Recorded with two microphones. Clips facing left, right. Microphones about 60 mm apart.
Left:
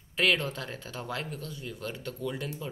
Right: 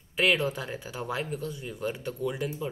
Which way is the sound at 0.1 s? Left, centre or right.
Centre.